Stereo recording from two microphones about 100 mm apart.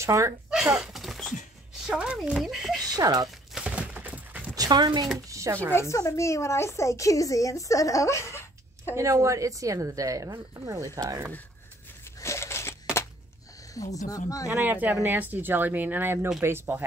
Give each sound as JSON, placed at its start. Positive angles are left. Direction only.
{"t": 0.0, "sound": "speech", "side_deg": -30}
{"t": 0.7, "sound": "a sound", "side_deg": -5}
{"t": 1.8, "sound": "speech", "side_deg": -5}
{"t": 2.8, "sound": "a sound", "side_deg": -40}
{"t": 3.5, "sound": "a sound", "side_deg": -10}
{"t": 4.6, "sound": "speech", "side_deg": -45}
{"t": 5.3, "sound": "speech", "side_deg": -30}
{"t": 5.7, "sound": "speech", "side_deg": 25}
{"t": 8.9, "sound": "a woman's voice", "side_deg": -30}
{"t": 12.2, "sound": "a sound", "side_deg": 30}
{"t": 13.7, "sound": "speech", "side_deg": 35}
{"t": 14.5, "sound": "speech", "side_deg": -20}